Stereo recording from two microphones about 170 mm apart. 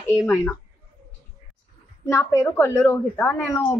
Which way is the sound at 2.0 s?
15° left (ahead or behind).